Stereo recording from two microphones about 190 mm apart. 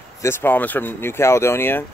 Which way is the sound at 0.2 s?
10° left (ahead or behind).